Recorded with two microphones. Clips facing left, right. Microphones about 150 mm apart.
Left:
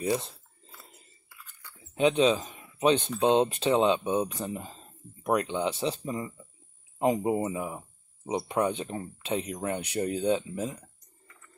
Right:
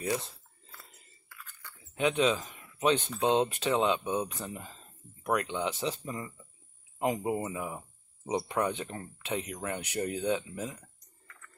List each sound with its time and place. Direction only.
0.0 s speech: 25° left (ahead or behind)
0.8 s biting: 15° left (ahead or behind)
2.0 s speech: 25° left (ahead or behind)